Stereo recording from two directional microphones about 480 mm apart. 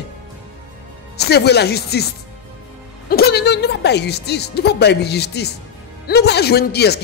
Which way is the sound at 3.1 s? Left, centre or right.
Centre.